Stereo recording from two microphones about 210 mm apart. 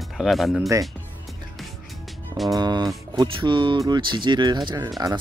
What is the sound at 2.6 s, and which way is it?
Music, 20° right (ahead or behind).